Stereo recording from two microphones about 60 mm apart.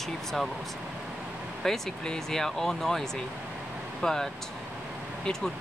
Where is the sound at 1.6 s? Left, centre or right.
Centre.